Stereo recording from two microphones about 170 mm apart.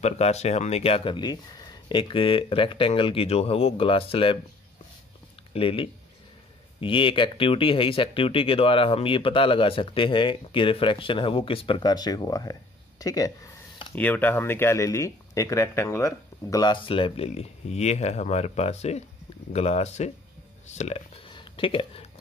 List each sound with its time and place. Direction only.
0.0 s speech: 40° left (ahead or behind)
5.5 s speech: 35° left (ahead or behind)
13.0 s a sound: 20° left (ahead or behind)
13.9 s speech: 10° left (ahead or behind); by 22.2 s 35° left (ahead or behind)